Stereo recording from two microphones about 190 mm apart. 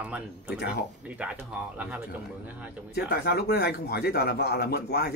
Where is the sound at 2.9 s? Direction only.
60° left (ahead or behind).